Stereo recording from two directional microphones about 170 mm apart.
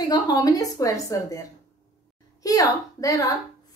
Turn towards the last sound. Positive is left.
turn(degrees=20)  # may be behind; listen again after turning